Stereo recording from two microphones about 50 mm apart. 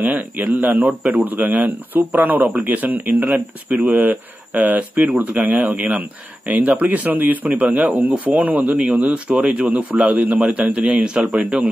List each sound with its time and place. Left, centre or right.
0.0 s speech: right